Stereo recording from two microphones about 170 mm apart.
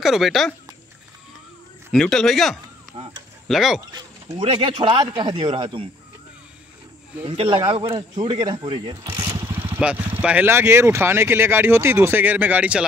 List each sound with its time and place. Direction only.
0.0 s speech: centre (ahead or behind)
1.9 s speech: centre (ahead or behind)
2.9 s a sound: 30° right (ahead or behind)
3.4 s speech: centre (ahead or behind)
3.9 s speech: 30° right (ahead or behind)
7.2 s speech: 30° right (ahead or behind)
9.5 s speech: 10° right (ahead or behind)